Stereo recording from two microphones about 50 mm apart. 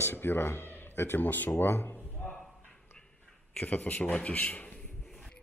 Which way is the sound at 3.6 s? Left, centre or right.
Left.